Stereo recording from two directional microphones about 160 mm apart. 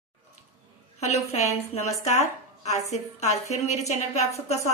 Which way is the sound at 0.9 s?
45° left (ahead or behind).